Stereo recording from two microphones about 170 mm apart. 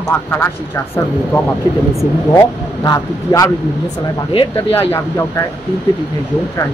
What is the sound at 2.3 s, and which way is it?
Speech, 20° left (ahead or behind).